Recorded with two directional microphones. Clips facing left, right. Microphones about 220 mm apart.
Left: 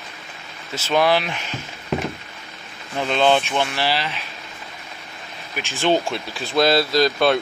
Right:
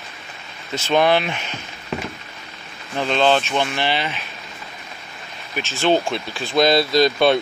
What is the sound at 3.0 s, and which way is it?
Speech, 10° left (ahead or behind).